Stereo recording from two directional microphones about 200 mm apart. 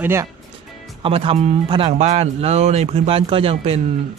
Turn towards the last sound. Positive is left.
turn(degrees=-30)  # may be behind; listen again after turning